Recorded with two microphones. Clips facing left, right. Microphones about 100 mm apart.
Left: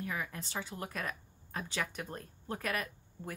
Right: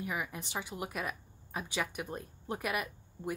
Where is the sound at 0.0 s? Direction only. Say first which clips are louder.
Right 1 dB; 15° right (ahead or behind).